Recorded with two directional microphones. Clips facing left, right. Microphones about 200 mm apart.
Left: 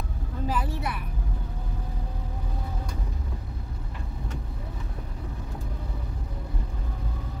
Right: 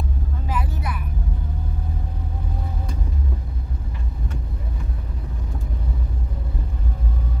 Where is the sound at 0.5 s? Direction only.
30° left (ahead or behind).